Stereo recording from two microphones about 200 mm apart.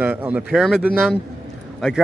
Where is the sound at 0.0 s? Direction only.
10° right (ahead or behind).